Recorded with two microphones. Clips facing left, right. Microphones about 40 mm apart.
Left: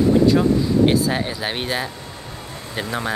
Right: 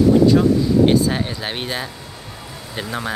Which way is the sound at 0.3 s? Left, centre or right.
Centre.